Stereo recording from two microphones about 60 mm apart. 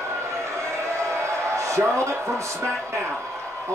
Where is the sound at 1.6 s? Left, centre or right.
Right.